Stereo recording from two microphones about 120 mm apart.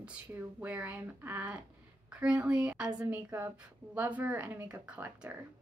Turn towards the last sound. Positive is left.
turn(degrees=-15)  # may be behind; listen again after turning